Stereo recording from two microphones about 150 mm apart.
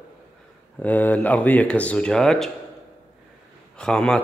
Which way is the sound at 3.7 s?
5° left (ahead or behind).